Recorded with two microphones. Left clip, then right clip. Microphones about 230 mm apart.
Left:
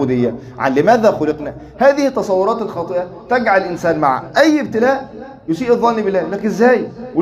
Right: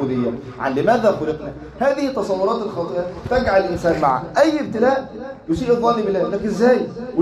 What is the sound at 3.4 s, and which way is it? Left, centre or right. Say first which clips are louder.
A man's voice: left 2 dB; left.